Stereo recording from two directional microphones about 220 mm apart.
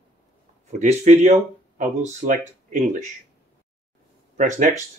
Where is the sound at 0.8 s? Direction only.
30° right (ahead or behind).